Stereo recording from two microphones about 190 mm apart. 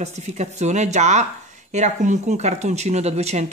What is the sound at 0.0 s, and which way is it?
Speech, 35° right (ahead or behind).